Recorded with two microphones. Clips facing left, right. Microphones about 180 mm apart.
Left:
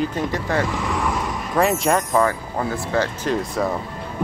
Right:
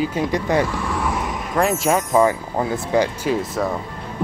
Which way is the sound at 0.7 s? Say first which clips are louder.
Even; 20° left (ahead or behind).